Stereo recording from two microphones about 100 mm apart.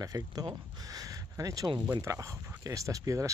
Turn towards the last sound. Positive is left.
turn(degrees=-35)  # may be behind; listen again after turning